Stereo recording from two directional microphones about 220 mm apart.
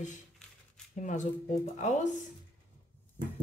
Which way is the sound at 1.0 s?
35° left (ahead or behind).